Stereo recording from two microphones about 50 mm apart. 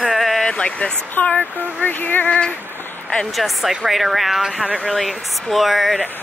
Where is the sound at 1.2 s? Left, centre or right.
Left.